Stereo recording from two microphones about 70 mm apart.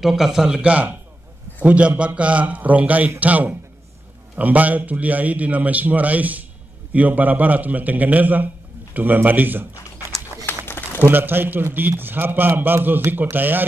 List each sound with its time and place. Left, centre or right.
0.0 s a man's voice: centre; by 9.7 s right
10.6 s a sound: left
11.0 s a man's voice: right